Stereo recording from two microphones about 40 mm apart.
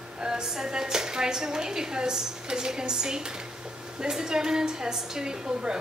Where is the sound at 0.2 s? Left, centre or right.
Centre.